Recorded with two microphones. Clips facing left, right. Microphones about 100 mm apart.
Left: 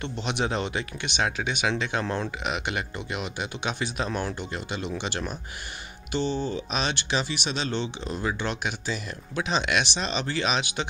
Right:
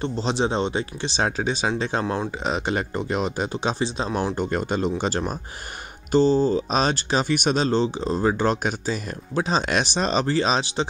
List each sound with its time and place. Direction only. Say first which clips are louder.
0.0 s speech: right 5 dB; 30° right (ahead or behind)
4.4 s speech: right 9 dB; 45° right (ahead or behind)